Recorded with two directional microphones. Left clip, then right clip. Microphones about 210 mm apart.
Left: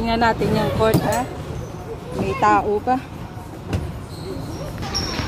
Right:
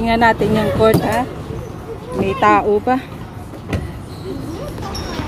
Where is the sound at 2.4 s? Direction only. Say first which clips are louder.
Right 4 dB; 15° right (ahead or behind).